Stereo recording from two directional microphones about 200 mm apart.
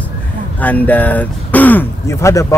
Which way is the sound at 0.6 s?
10° left (ahead or behind).